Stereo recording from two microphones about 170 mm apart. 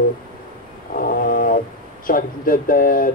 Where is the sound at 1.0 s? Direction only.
55° left (ahead or behind).